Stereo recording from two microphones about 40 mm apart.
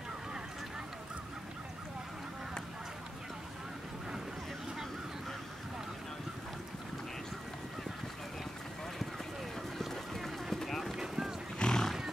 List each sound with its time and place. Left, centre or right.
9.8 s run: centre
11.0 s boat: centre
11.5 s wild animals: left